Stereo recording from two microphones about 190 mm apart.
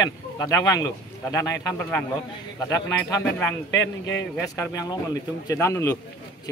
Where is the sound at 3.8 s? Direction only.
70° left (ahead or behind).